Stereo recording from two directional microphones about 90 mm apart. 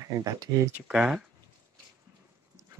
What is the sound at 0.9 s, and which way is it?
Speech, 10° right (ahead or behind).